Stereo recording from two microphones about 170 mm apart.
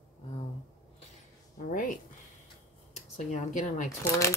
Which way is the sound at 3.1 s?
45° left (ahead or behind).